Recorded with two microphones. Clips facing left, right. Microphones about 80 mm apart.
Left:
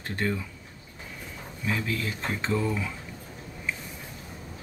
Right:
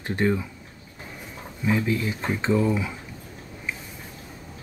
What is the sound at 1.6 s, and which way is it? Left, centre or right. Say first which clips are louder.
Speech: right 6 dB; right.